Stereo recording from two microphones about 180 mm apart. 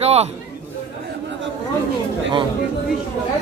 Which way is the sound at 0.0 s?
35° right (ahead or behind).